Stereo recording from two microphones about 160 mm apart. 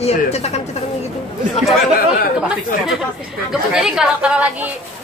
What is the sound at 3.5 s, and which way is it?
Speech, 5° right (ahead or behind).